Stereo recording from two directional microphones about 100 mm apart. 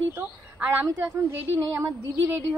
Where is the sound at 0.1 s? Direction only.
20° right (ahead or behind).